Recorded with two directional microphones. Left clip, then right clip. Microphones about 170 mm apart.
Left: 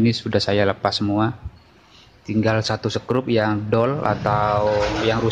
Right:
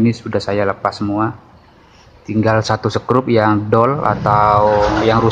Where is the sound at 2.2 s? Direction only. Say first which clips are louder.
Right 6 dB; 10° left (ahead or behind).